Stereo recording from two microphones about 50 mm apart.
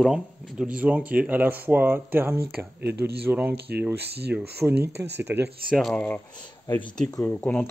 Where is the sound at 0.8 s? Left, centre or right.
Right.